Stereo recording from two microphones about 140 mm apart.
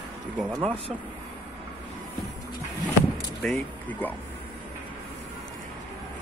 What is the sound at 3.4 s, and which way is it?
Speech, 5° left (ahead or behind).